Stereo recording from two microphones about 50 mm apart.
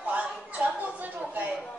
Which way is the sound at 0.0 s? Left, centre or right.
Right.